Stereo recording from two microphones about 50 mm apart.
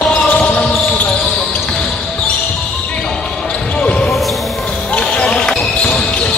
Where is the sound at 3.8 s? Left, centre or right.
Left.